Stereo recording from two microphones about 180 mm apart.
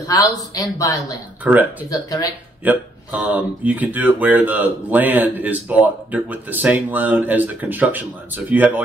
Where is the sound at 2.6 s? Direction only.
10° right (ahead or behind).